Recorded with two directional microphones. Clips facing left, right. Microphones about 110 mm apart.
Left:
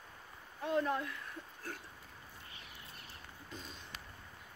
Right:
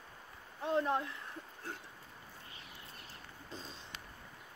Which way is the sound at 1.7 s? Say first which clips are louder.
Even; 25° right (ahead or behind).